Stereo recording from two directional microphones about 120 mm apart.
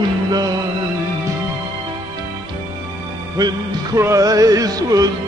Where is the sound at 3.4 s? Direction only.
35° right (ahead or behind).